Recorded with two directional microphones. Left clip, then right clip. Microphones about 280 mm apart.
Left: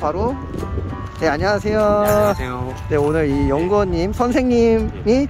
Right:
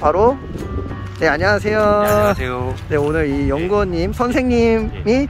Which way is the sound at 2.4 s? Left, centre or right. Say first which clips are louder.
Right 3 dB; centre.